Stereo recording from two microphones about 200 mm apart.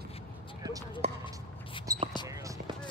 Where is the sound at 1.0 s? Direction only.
30° right (ahead or behind).